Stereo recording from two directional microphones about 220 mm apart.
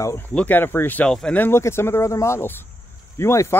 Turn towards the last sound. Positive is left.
turn(degrees=10)  # may be behind; listen again after turning